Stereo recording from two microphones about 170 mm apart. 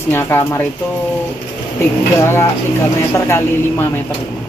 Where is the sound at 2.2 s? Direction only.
15° left (ahead or behind).